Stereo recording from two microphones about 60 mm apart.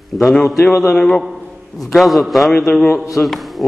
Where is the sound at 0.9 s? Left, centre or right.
Centre.